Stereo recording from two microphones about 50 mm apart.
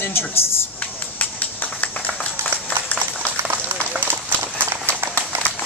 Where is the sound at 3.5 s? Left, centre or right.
Right.